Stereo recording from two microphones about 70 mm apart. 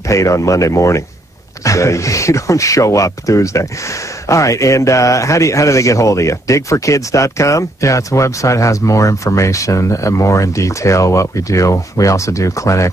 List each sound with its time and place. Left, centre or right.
0.1 s a man's voice: left